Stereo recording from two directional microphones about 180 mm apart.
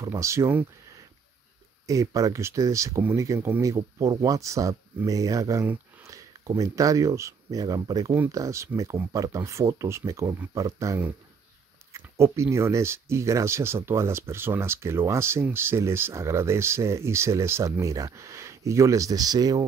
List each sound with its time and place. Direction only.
0.0 s speech: 15° right (ahead or behind)
1.9 s speech: 20° right (ahead or behind)